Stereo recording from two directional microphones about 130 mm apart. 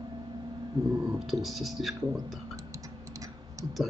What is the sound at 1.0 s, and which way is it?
Speech, centre (ahead or behind).